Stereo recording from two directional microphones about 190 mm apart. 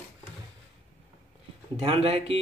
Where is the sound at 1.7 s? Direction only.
30° right (ahead or behind).